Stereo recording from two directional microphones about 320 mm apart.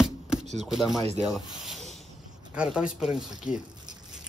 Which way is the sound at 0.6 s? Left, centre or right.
Centre.